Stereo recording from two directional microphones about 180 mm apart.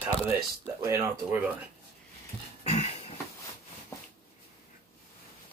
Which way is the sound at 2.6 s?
35° left (ahead or behind).